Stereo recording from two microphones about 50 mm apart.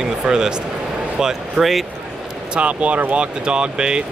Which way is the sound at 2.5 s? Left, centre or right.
Right.